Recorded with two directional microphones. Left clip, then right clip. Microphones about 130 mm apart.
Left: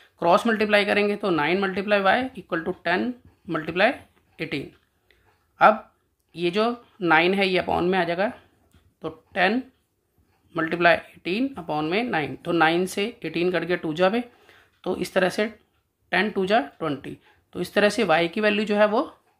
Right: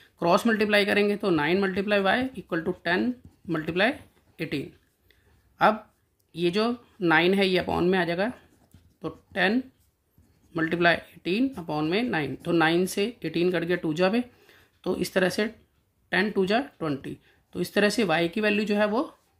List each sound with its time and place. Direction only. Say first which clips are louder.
0.0 s speech: left 3 dB; 40° right (ahead or behind)
4.4 s a sound: left 2 dB; 35° right (ahead or behind)
5.6 s speech: left 5 dB; 40° right (ahead or behind)